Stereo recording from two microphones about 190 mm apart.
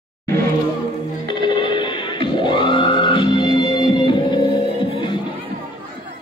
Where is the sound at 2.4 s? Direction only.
25° left (ahead or behind).